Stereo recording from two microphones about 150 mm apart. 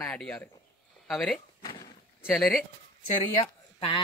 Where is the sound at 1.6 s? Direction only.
30° left (ahead or behind).